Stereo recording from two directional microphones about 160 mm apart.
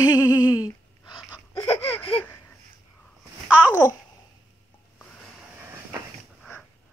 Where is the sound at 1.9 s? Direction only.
10° left (ahead or behind).